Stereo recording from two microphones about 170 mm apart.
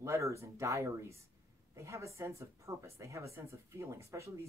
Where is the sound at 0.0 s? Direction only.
15° right (ahead or behind).